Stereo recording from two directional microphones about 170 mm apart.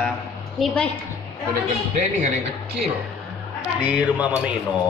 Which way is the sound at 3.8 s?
10° right (ahead or behind).